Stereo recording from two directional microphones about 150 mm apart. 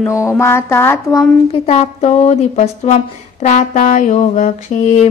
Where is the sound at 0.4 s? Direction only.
15° left (ahead or behind).